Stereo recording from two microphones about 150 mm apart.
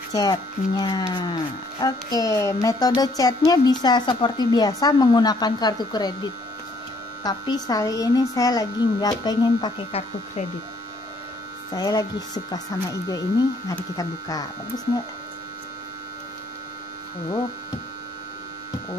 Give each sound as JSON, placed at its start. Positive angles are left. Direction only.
{"t": 0.1, "sound": "speech", "side_deg": 25}
{"t": 11.7, "sound": "speech", "side_deg": 25}